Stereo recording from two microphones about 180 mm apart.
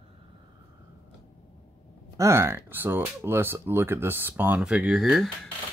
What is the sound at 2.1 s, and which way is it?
Speech, 15° right (ahead or behind).